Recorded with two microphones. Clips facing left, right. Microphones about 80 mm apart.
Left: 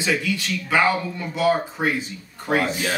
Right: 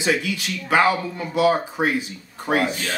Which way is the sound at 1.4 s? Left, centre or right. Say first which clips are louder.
Right 1 dB; centre.